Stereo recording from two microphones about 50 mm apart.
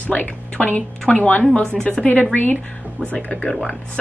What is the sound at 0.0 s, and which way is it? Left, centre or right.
A woman's voice, left.